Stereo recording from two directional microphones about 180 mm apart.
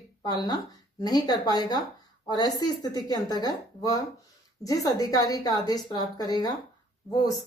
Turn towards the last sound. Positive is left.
turn(degrees=20)  # may be behind; listen again after turning